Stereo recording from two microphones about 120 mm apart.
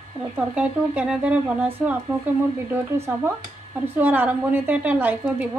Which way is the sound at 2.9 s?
20° right (ahead or behind).